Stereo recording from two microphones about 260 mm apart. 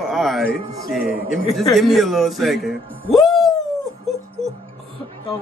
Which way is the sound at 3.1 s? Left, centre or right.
Centre.